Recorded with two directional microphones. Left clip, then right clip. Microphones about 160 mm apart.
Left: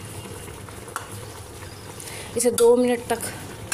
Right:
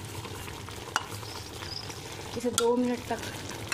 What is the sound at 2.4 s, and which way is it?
Speech, 15° left (ahead or behind).